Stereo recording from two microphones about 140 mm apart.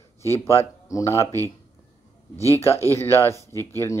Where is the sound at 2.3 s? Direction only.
20° right (ahead or behind).